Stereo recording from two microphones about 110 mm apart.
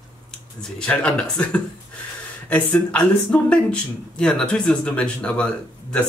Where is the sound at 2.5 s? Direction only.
10° left (ahead or behind).